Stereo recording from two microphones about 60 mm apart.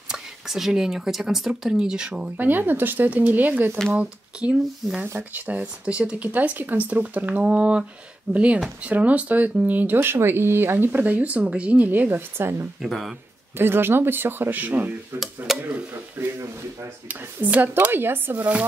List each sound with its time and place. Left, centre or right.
0.1 s speech: centre
2.3 s speech: right
10.9 s speech: right
12.8 s speech: centre
13.6 s speech: right
15.1 s speech: centre
15.6 s a sound: right
17.1 s speech: right